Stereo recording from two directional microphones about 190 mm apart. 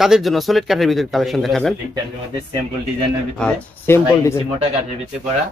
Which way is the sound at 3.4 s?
15° left (ahead or behind).